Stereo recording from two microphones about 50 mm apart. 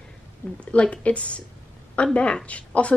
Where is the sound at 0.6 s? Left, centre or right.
Left.